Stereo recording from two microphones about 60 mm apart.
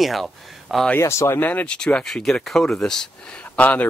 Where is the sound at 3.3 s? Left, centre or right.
Left.